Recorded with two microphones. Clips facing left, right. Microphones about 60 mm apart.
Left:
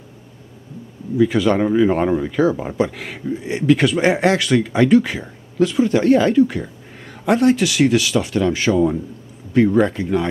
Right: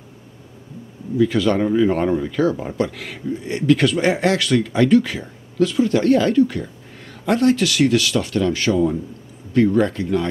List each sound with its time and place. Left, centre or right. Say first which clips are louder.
1.1 s speech: left 1 dB; centre